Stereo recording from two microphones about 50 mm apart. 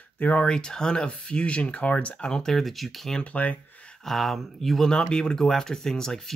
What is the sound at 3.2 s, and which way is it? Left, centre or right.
Speech, left.